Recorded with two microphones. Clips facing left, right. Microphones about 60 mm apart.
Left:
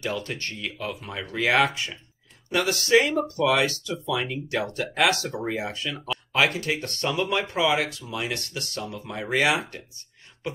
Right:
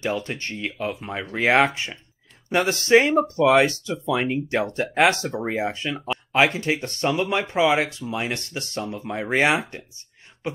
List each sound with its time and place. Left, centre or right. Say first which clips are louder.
0.0 s speech: right 3 dB; right